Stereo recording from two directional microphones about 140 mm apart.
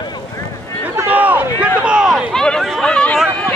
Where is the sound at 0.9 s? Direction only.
15° right (ahead or behind); by 3.2 s 5° left (ahead or behind).